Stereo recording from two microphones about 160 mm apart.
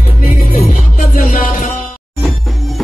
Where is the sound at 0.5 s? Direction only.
45° left (ahead or behind).